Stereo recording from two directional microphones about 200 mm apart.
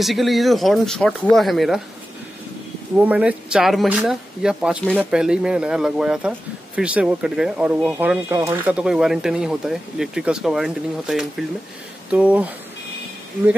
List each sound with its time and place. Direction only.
0.0 s speech: centre (ahead or behind)
3.0 s speech: 5° right (ahead or behind)